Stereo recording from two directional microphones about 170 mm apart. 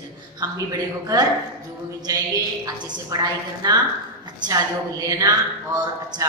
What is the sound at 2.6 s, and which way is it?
A woman's voice, 20° right (ahead or behind).